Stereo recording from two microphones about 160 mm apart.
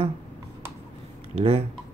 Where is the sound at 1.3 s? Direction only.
40° right (ahead or behind).